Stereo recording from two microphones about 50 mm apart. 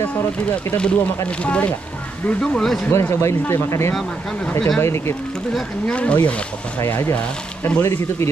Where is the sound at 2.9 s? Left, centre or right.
Left.